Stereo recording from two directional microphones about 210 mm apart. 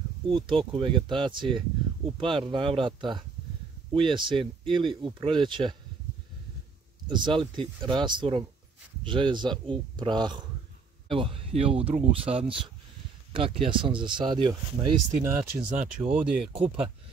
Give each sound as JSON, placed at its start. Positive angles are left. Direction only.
{"t": 0.3, "sound": "speech", "side_deg": -25}
{"t": 7.1, "sound": "speech", "side_deg": -20}
{"t": 16.0, "sound": "speech", "side_deg": -5}
{"t": 16.3, "sound": "speech", "side_deg": -25}